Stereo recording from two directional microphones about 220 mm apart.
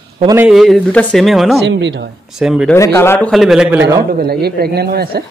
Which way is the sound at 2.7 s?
10° left (ahead or behind).